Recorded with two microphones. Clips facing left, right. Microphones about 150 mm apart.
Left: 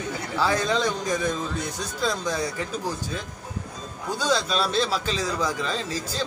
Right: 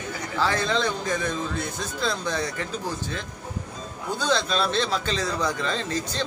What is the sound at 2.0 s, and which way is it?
A man's voice, 10° left (ahead or behind).